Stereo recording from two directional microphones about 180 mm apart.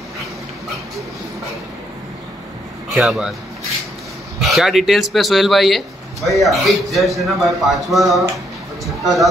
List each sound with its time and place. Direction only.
2.9 s speech: centre (ahead or behind)
4.4 s speech: centre (ahead or behind)